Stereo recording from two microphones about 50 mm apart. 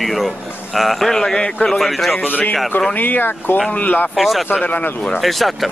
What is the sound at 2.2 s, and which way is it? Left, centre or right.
Speech, left.